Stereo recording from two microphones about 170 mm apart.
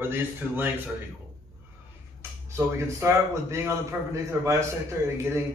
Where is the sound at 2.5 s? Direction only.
15° right (ahead or behind).